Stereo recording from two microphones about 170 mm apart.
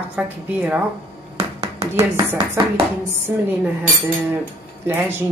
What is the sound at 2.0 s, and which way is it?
Speech, 20° right (ahead or behind).